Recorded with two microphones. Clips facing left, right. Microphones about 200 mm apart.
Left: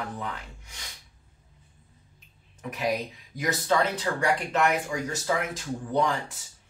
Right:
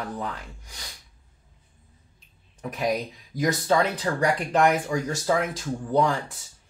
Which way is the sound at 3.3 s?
35° right (ahead or behind).